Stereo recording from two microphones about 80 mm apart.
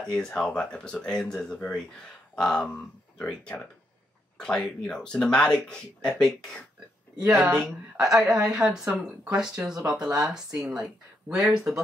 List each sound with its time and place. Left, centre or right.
0.0 s speech: centre
7.2 s speech: centre
8.0 s speech: centre